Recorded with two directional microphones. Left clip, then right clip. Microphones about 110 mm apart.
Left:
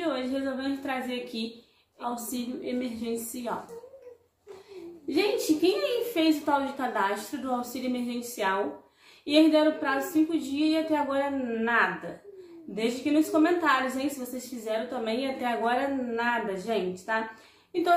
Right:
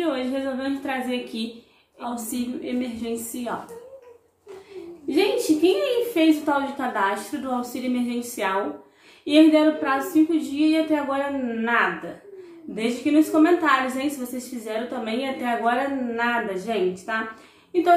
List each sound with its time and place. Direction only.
0.0 s a woman's voice: 20° left (ahead or behind)
5.0 s a woman's voice: 20° left (ahead or behind)